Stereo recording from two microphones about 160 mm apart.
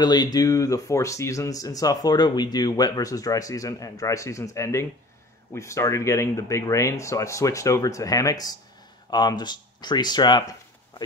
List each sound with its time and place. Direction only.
0.0 s speech: 25° left (ahead or behind)